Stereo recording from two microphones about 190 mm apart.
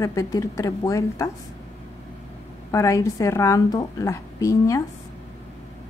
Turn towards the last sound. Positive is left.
turn(degrees=15)  # may be behind; listen again after turning